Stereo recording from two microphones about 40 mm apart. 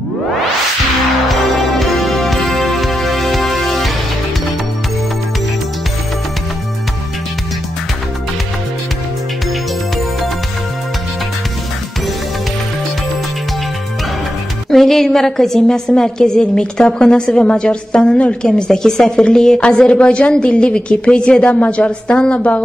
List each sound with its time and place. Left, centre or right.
1.8 s music: centre
14.7 s a sound: centre
15.9 s a woman's voice: centre